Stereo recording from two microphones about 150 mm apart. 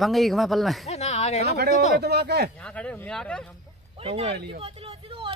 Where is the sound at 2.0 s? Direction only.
90° right.